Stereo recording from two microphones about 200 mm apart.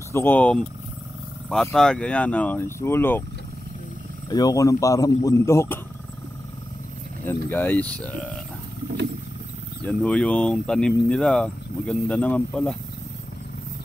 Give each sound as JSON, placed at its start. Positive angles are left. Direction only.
{"t": 0.1, "sound": "speech", "side_deg": 10}
{"t": 4.3, "sound": "speech", "side_deg": 15}
{"t": 7.2, "sound": "speech", "side_deg": 10}
{"t": 9.8, "sound": "speech", "side_deg": 5}